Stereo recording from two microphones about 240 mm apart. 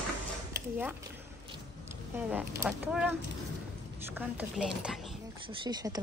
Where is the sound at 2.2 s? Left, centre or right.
Centre.